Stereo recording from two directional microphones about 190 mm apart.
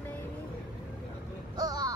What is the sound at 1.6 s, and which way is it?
Vehicle, 20° right (ahead or behind).